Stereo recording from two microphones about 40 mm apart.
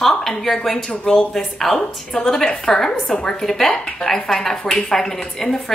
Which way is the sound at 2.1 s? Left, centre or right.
Centre.